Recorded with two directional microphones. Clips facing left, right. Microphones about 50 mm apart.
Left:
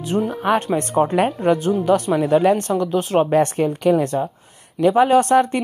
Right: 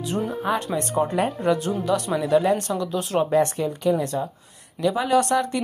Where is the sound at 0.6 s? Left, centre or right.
Left.